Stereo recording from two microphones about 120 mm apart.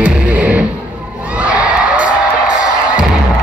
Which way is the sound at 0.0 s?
10° right (ahead or behind).